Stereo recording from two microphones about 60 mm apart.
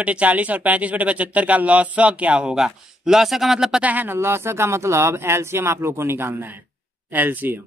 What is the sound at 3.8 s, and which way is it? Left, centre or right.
Speech, right.